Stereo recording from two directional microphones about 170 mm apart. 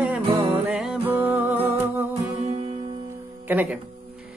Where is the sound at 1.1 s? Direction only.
10° right (ahead or behind).